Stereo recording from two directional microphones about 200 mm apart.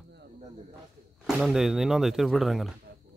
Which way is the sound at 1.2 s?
Centre (ahead or behind).